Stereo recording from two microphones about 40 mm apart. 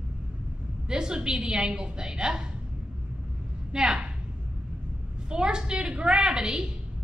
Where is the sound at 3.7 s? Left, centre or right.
Right.